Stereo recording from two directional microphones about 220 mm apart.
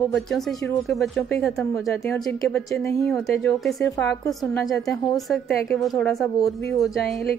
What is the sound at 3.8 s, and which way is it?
Speech, 15° left (ahead or behind).